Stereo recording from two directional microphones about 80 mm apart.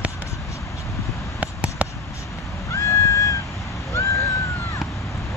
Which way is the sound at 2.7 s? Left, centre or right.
Left.